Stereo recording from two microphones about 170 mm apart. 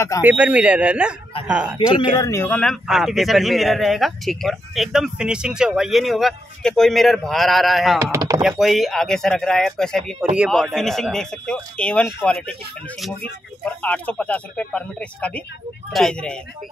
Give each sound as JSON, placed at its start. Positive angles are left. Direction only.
{"t": 0.2, "sound": "speech", "side_deg": -10}
{"t": 1.8, "sound": "speech", "side_deg": 20}
{"t": 8.1, "sound": "a sound", "side_deg": -20}
{"t": 8.4, "sound": "speech", "side_deg": 0}
{"t": 13.7, "sound": "speech", "side_deg": 10}